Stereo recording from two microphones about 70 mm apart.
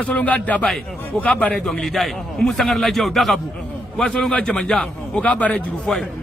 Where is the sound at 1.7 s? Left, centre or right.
Centre.